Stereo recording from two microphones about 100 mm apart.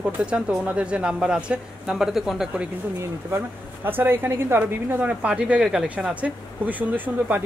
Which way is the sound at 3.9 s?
20° right (ahead or behind).